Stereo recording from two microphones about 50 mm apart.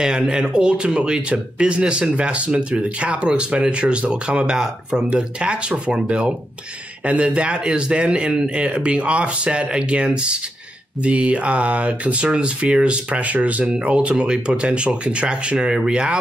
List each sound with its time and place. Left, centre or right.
0.0 s speech: centre